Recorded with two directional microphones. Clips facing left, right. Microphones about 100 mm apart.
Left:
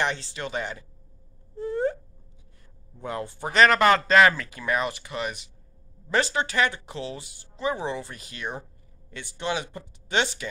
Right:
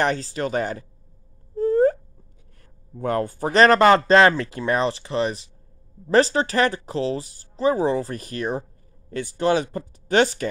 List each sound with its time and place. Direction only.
0.0 s speech: 40° right (ahead or behind)
1.5 s a sound: 40° right (ahead or behind)
3.0 s speech: 50° right (ahead or behind)